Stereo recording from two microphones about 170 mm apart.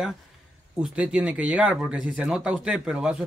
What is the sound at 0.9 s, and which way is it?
Speech, 5° right (ahead or behind).